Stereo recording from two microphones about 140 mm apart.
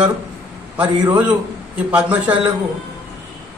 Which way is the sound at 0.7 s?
10° right (ahead or behind).